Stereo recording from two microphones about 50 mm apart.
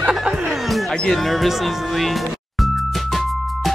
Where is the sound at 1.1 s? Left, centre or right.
Centre.